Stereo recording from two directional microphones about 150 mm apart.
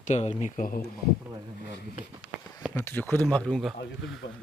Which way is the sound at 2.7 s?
15° left (ahead or behind).